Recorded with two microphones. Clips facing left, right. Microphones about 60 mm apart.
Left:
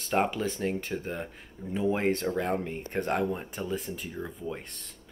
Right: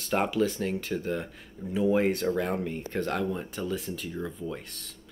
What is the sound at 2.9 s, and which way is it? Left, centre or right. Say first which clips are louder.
Speech: left 1 dB; left.